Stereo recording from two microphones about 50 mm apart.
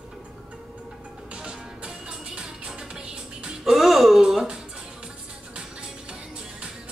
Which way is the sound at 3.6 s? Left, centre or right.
Centre.